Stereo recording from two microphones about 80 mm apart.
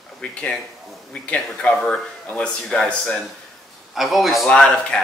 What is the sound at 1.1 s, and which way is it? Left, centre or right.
Speech, centre.